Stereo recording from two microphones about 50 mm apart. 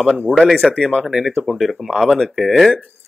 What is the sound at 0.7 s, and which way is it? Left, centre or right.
Speech, centre.